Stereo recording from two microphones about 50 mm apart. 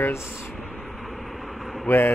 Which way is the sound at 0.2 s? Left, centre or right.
Centre.